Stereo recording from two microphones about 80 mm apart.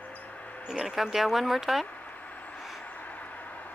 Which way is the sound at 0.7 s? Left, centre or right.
Centre.